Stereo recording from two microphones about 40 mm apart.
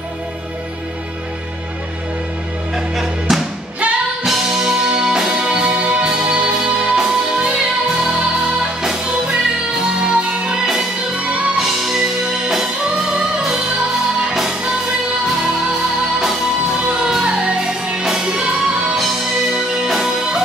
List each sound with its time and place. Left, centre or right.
2.7 s music: centre; by 10.6 s right
10.6 s music: centre
19.5 s music: centre